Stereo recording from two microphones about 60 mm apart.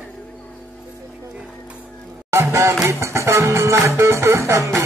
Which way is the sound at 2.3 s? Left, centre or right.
Right.